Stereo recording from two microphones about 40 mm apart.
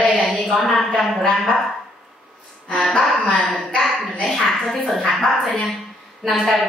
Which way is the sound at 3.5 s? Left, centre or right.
Centre.